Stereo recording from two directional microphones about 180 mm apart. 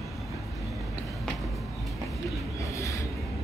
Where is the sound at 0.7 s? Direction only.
Centre (ahead or behind).